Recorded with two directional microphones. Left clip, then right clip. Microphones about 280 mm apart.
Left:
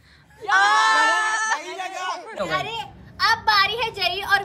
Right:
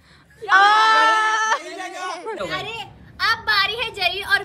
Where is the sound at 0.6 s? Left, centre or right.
Centre.